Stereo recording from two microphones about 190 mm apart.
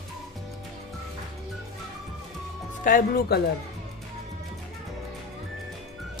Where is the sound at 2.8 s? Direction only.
45° left (ahead or behind).